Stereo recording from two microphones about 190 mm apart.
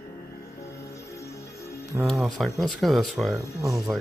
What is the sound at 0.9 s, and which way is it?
Music, 15° left (ahead or behind).